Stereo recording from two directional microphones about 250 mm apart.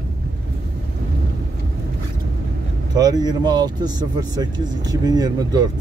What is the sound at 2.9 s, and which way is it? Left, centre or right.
A man's voice, centre.